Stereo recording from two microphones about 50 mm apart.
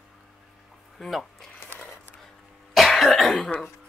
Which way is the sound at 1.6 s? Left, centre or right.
Left.